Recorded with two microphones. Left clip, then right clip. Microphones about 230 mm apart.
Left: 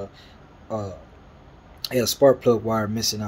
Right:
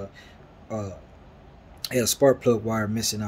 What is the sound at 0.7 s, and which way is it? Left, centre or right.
A man's voice, centre.